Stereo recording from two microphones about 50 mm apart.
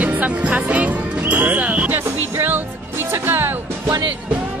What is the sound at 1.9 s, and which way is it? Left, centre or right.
Music, right.